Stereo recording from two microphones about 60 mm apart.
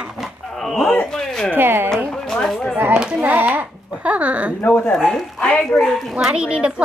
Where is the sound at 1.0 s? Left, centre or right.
Centre.